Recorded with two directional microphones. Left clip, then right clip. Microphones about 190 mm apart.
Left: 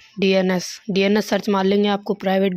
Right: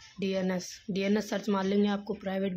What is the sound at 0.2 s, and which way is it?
Speech, 45° left (ahead or behind).